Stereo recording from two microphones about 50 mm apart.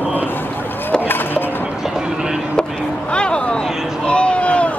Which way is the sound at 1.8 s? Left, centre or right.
Centre.